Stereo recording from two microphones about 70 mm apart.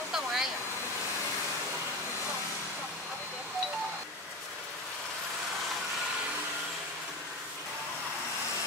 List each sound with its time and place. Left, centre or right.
0.1 s waterfall: centre